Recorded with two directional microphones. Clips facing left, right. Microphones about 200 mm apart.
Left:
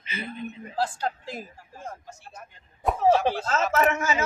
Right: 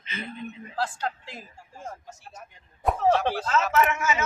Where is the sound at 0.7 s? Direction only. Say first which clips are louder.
Left 2 dB; 35° left (ahead or behind).